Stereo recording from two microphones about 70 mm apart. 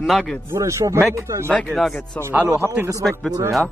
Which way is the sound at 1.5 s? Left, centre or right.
Centre.